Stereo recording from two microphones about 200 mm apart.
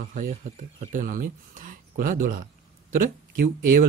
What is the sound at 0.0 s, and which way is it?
Speech, 40° right (ahead or behind).